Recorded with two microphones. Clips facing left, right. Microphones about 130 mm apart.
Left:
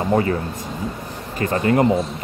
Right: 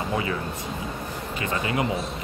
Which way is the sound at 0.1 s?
45° left (ahead or behind).